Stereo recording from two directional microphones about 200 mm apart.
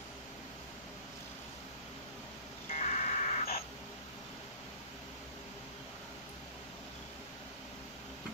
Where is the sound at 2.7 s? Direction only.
35° left (ahead or behind).